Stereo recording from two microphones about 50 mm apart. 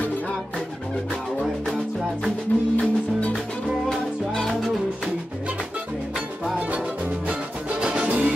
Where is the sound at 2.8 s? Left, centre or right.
Left.